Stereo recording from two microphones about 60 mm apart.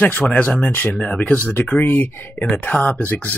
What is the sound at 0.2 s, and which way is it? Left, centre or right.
Speech, left.